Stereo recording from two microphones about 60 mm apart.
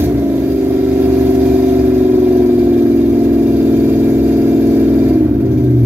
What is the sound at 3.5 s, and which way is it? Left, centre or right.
Vehicle, right.